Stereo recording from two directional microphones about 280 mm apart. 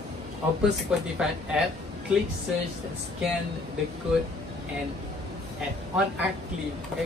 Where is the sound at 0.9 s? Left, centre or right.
Centre.